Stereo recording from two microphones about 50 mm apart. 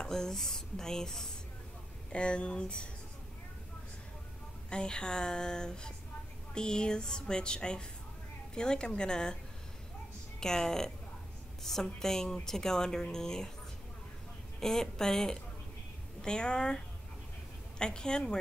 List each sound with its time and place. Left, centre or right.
0.0 s speech: centre
4.6 s speech: centre
10.4 s speech: centre
14.6 s speech: centre